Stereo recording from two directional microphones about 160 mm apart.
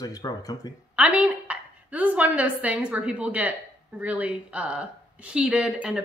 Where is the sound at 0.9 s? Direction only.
10° right (ahead or behind).